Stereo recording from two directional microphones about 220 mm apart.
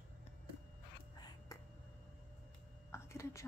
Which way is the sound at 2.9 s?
15° left (ahead or behind).